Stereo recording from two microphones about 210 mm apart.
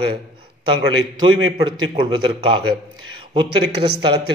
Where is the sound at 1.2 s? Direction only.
20° right (ahead or behind).